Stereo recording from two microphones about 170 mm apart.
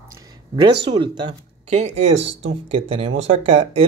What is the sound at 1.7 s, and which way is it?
Speech, 40° right (ahead or behind).